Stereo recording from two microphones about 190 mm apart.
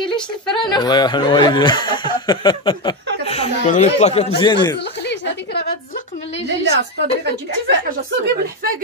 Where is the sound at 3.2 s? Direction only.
40° left (ahead or behind).